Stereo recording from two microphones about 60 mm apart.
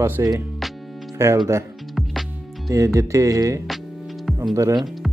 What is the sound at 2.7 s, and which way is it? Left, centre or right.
Speech, right.